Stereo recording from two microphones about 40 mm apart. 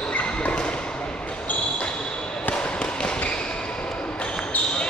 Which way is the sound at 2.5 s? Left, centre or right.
Left.